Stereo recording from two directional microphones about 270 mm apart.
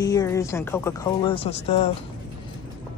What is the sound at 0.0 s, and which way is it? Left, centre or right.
Speech, centre.